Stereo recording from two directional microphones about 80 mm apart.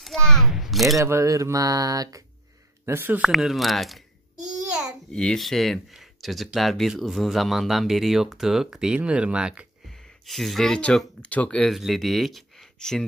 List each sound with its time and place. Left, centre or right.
0.0 s a child's voice: centre
0.5 s a sound: centre
0.9 s speech: right
2.8 s speech: right
3.3 s speech: centre
5.1 s speech: centre
9.8 s a sound: centre
11.1 s speech: centre
11.7 s speech: centre